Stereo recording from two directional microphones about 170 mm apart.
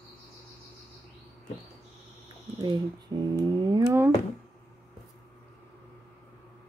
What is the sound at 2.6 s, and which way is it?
Speech, 25° right (ahead or behind).